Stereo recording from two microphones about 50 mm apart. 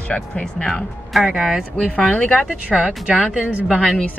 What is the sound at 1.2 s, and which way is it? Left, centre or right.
Speech, centre.